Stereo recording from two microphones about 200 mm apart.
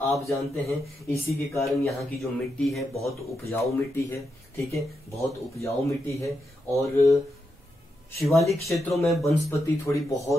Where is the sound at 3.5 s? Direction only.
10° left (ahead or behind).